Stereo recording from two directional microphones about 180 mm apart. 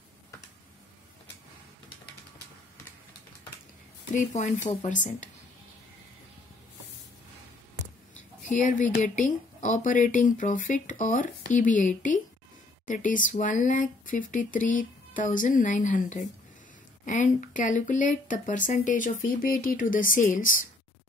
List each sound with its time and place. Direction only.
4.1 s speech: 40° left (ahead or behind)
8.5 s speech: 45° left (ahead or behind)